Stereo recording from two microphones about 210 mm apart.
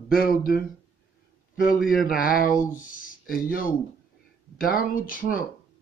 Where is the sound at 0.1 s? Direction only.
45° left (ahead or behind).